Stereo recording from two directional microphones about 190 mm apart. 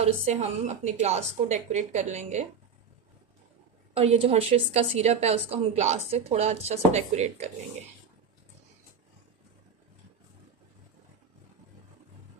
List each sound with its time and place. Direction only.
0.0 s a woman's voice: 35° right (ahead or behind)
3.9 s a woman's voice: 30° right (ahead or behind)